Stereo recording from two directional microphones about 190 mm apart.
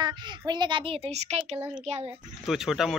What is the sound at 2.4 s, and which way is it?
Speech, centre (ahead or behind).